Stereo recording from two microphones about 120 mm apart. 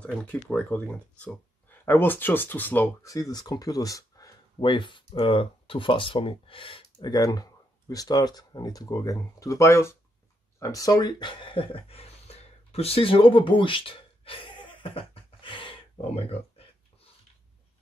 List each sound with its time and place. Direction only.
0.0 s speech: 10° left (ahead or behind)
3.1 s speech: 30° left (ahead or behind)
4.6 s speech: 40° left (ahead or behind)
7.1 s speech: 30° left (ahead or behind)
10.6 s a sound: 30° left (ahead or behind); by 15.8 s 45° left (ahead or behind)
16.0 s a sound: 55° left (ahead or behind)